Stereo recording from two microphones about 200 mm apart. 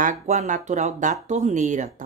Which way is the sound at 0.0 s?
40° right (ahead or behind).